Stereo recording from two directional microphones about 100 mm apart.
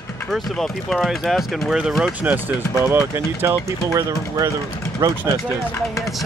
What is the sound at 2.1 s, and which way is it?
Speech, 15° right (ahead or behind).